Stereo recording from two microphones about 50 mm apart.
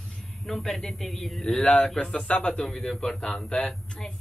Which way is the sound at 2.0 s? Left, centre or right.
Centre.